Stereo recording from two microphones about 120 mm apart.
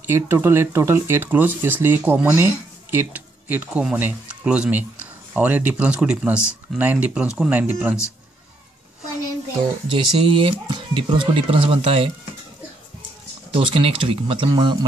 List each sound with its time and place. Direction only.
0.0 s speech: 20° right (ahead or behind)
9.8 s speech: 45° right (ahead or behind)
13.5 s a man's voice: 50° right (ahead or behind)